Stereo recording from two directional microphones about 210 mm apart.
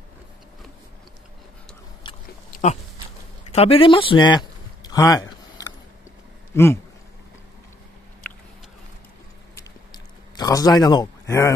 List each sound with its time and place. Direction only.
2.0 s chewing: 20° left (ahead or behind)
3.5 s a sound: 25° left (ahead or behind)
6.5 s speech: 10° left (ahead or behind)
10.3 s a man's voice: 15° left (ahead or behind)